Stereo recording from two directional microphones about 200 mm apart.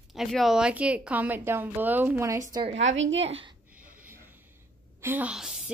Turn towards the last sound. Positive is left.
turn(degrees=0)  # may be behind; listen again after turning